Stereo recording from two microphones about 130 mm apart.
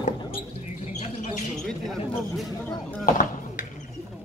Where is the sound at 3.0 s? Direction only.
90° left.